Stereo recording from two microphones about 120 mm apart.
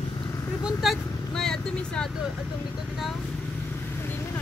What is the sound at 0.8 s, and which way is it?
Vehicle, centre (ahead or behind).